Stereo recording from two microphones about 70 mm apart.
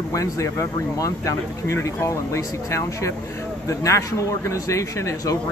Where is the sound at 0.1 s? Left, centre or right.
Left.